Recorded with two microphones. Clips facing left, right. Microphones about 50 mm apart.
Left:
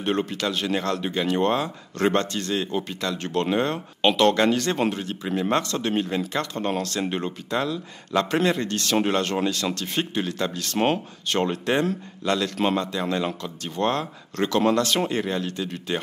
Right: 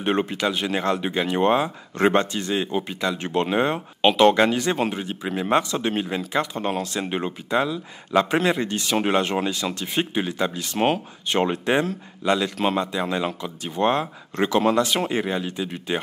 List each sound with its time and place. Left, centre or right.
0.0 s speech: right